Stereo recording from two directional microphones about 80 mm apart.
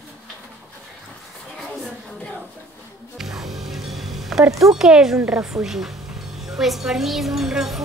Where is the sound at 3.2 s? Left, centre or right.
Centre.